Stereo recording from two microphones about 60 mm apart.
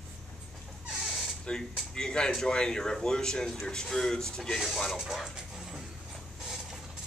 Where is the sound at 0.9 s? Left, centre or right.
Centre.